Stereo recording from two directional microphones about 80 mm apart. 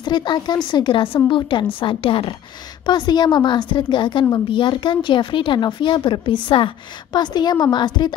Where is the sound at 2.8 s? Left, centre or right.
Left.